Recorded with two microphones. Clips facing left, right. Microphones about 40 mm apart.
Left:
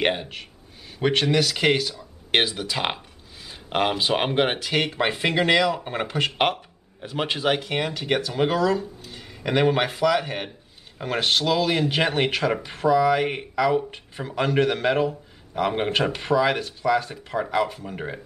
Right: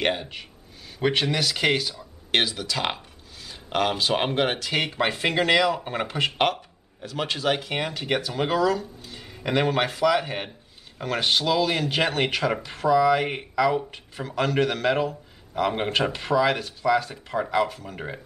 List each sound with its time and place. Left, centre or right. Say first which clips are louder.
0.0 s speech: left 2 dB; centre
1.0 s speech: left 2 dB; centre
2.3 s a sound: left 1 dB; centre
4.0 s speech: left 1 dB; centre
4.7 s speech: left 2 dB; centre
6.3 s a sound: left 1 dB; centre
7.1 s a man's voice: left 2 dB; left
7.7 s speech: left 2 dB; centre
10.0 s speech: even; centre
11.0 s speech: left 1 dB; centre
11.2 s speech: left 1 dB; centre